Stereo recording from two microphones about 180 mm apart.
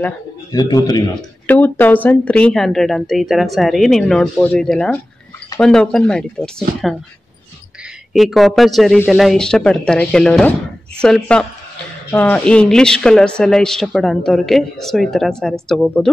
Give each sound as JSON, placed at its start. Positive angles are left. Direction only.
{"t": 0.5, "sound": "a man's voice", "side_deg": 20}
{"t": 1.5, "sound": "speech", "side_deg": 10}
{"t": 8.1, "sound": "speech", "side_deg": 0}